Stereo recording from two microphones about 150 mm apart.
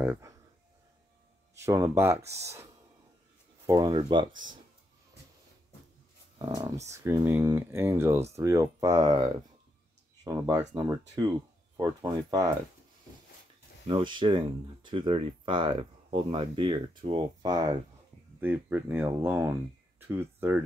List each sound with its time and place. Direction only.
0.0 s a sound: 15° right (ahead or behind)
1.5 s speech: 20° right (ahead or behind)
6.3 s speech: 25° right (ahead or behind)
13.8 s speech: 35° right (ahead or behind)
18.4 s speech: 10° right (ahead or behind)